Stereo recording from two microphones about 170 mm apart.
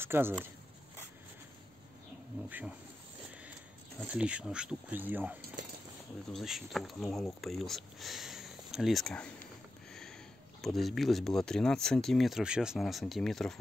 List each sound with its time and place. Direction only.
0.0 s speech: 15° right (ahead or behind)
4.0 s speech: 5° right (ahead or behind)
10.6 s speech: centre (ahead or behind)